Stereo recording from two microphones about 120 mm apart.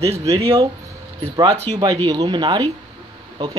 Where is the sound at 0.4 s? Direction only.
50° right (ahead or behind).